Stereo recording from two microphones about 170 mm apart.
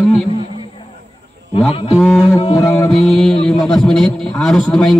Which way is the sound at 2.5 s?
15° left (ahead or behind).